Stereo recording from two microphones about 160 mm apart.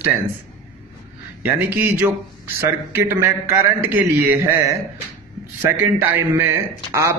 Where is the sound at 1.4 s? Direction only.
15° right (ahead or behind).